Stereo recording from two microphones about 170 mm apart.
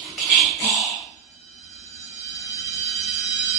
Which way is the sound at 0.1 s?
Centre (ahead or behind).